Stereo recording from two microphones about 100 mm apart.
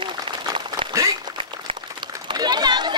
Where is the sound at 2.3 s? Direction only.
45° right (ahead or behind).